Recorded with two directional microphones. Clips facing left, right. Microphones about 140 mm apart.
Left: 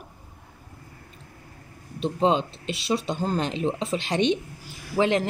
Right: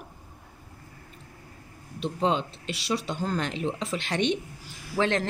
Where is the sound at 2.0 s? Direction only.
25° left (ahead or behind).